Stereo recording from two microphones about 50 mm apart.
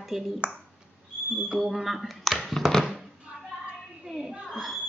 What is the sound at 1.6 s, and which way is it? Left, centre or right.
Speech, centre.